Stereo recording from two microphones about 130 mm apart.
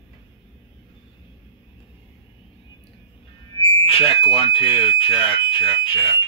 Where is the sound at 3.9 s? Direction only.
45° left (ahead or behind).